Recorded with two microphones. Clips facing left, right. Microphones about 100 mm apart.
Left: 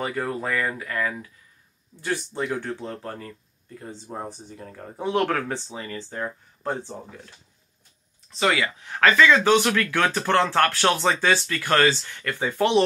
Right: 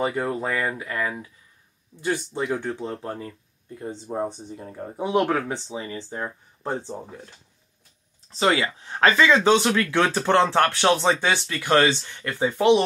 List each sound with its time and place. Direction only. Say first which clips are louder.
0.0 s speech: right 3 dB; 20° right (ahead or behind)
8.3 s speech: right 1 dB; 30° right (ahead or behind)